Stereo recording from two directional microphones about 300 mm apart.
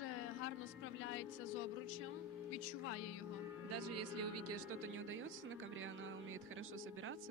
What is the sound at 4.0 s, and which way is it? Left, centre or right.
Speech, right.